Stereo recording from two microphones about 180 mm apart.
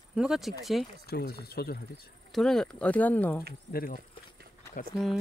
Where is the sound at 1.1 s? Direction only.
60° left (ahead or behind).